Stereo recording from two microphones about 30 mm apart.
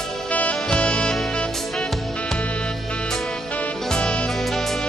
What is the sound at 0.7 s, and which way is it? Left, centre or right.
Music, left.